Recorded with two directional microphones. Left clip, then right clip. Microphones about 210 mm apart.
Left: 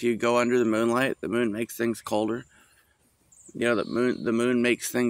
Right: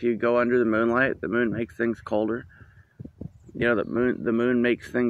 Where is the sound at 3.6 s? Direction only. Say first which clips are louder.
Right 1 dB; 10° left (ahead or behind).